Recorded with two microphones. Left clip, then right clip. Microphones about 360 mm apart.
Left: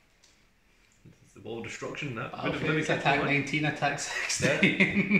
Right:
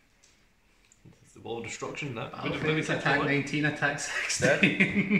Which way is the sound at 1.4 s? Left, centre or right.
Centre.